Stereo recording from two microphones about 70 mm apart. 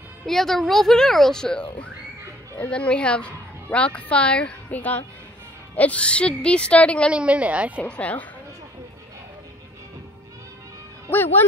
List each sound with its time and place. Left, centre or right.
0.3 s a woman's voice: centre
7.1 s speech: centre
7.8 s speech: left
11.1 s speech: left